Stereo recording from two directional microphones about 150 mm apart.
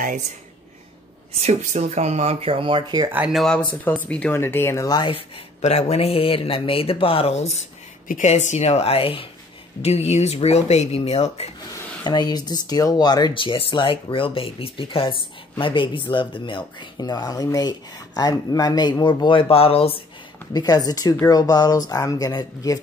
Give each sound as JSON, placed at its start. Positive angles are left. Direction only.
{"t": 1.4, "sound": "speech", "side_deg": -50}
{"t": 3.1, "sound": "speech", "side_deg": -5}
{"t": 5.6, "sound": "speech", "side_deg": 45}
{"t": 12.0, "sound": "speech", "side_deg": 30}
{"t": 20.5, "sound": "speech", "side_deg": 25}